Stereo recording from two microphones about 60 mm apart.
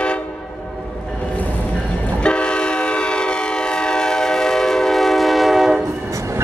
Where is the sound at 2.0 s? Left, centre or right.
Centre.